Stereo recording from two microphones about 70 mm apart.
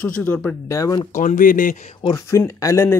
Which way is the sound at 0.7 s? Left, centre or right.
Left.